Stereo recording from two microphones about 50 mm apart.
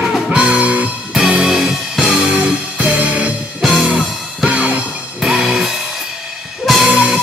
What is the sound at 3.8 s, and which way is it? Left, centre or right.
Music, right.